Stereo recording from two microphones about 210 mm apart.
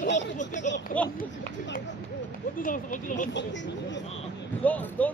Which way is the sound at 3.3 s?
60° left (ahead or behind).